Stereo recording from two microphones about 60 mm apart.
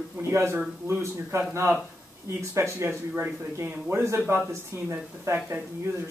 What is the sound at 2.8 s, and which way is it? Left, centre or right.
Speech, right.